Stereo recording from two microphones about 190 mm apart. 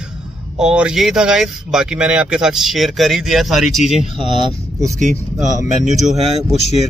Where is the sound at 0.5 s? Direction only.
5° right (ahead or behind).